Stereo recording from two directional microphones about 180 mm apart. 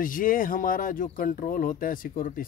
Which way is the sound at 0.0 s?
50° left (ahead or behind).